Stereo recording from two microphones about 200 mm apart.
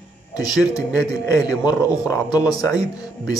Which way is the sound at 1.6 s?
20° left (ahead or behind).